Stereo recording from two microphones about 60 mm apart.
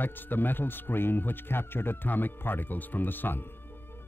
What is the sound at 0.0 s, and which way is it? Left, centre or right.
Speech, left.